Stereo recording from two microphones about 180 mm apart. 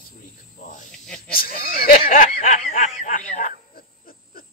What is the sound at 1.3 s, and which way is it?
Speech, 55° left (ahead or behind).